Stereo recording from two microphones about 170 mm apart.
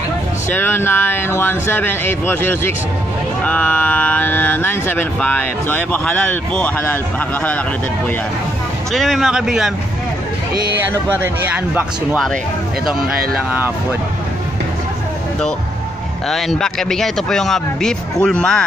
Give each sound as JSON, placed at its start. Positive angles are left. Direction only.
{"t": 0.5, "sound": "speech", "side_deg": 15}
{"t": 8.9, "sound": "speech", "side_deg": 0}
{"t": 10.9, "sound": "speech", "side_deg": -10}
{"t": 13.3, "sound": "speech", "side_deg": -10}
{"t": 16.3, "sound": "speech", "side_deg": 0}